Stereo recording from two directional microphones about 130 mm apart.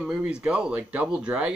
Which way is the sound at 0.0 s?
5° right (ahead or behind).